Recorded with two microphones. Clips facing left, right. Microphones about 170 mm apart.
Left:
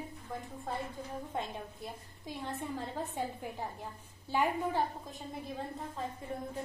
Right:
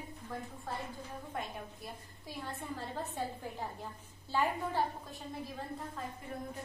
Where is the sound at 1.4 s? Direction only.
25° left (ahead or behind).